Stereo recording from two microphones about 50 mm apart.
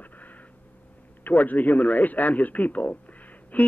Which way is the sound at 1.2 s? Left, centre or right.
Left.